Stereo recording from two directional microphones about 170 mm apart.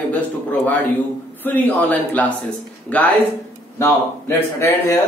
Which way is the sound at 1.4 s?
10° left (ahead or behind).